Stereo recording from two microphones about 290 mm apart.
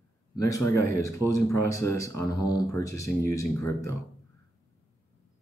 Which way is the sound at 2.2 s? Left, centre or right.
Centre.